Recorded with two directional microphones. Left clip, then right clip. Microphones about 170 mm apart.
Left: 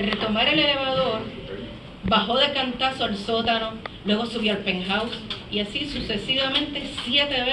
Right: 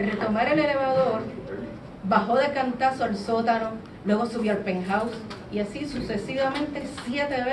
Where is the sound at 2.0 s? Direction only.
50° right (ahead or behind).